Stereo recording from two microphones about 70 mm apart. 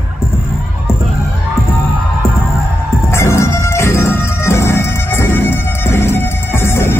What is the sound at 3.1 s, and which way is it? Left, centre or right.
Music, left.